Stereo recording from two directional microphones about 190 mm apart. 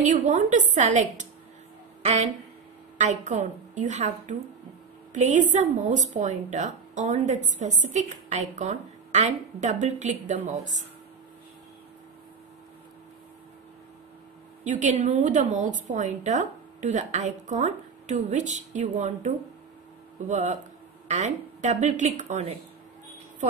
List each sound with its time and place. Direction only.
0.0 s speech: 40° right (ahead or behind)
3.0 s speech: 40° right (ahead or behind)
14.6 s speech: 40° right (ahead or behind)